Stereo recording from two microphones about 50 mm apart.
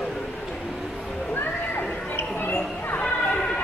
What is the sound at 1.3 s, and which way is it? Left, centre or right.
Neigh, left.